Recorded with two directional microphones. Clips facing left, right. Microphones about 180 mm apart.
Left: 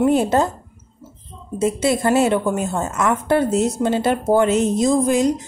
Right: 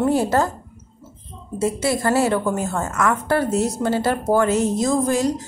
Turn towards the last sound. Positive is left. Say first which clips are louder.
# left 3 dB
turn(degrees=20)  # may be behind; listen again after turning